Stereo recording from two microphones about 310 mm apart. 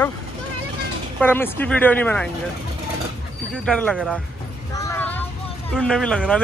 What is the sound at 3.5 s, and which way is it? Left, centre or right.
Speech, centre.